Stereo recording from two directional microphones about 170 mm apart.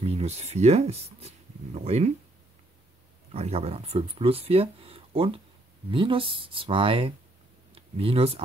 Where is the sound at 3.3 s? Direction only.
40° right (ahead or behind).